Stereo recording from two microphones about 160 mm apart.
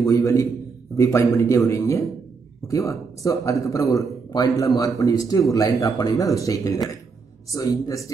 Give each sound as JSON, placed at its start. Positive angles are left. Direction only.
{"t": 0.0, "sound": "speech", "side_deg": 20}